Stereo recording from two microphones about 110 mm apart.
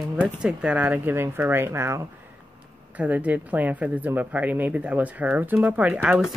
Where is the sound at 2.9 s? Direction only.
15° right (ahead or behind).